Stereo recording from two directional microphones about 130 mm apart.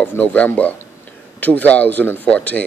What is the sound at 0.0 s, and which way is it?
Speech, 15° left (ahead or behind).